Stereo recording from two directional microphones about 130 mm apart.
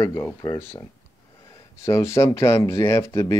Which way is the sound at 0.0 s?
20° left (ahead or behind).